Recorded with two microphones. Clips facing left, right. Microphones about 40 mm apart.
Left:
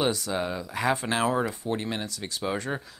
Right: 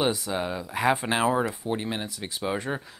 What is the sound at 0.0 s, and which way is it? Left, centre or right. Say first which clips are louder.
Speech: even; centre.